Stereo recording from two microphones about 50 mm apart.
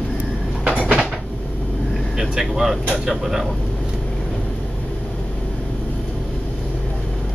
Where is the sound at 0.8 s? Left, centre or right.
Centre.